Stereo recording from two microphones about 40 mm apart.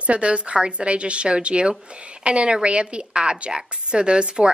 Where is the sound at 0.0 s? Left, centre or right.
Right.